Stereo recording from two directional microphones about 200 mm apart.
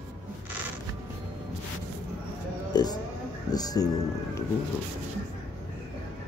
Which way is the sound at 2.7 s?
20° left (ahead or behind).